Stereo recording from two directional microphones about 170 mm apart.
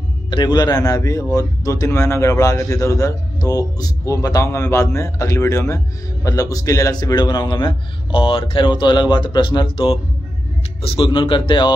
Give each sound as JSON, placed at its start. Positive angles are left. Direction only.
{"t": 0.3, "sound": "a man's voice", "side_deg": 25}